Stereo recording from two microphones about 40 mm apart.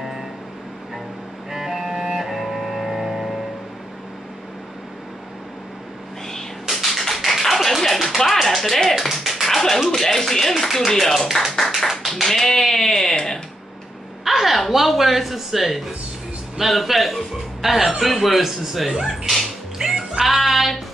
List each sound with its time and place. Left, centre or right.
1.5 s music: centre
6.7 s music: centre
8.2 s speech: centre
13.1 s a sound: centre
14.2 s speech: centre
20.2 s music: centre